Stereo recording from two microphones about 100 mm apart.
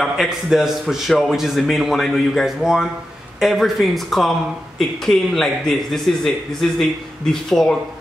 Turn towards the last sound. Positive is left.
turn(degrees=5)  # may be behind; listen again after turning